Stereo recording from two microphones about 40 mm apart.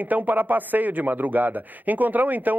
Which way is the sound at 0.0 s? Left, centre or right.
Right.